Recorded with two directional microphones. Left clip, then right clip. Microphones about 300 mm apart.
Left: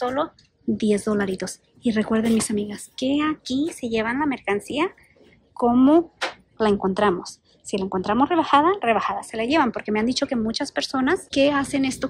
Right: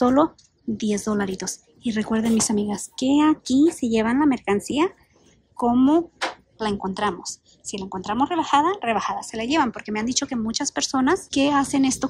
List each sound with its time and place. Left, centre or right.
0.0 s a woman's voice: centre